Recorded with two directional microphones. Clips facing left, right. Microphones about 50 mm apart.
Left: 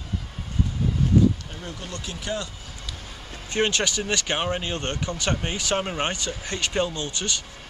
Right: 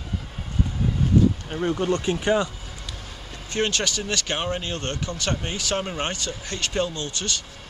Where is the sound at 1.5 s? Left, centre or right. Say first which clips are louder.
Right 12 dB; right.